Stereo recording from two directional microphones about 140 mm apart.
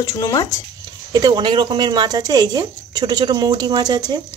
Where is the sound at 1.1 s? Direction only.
30° right (ahead or behind).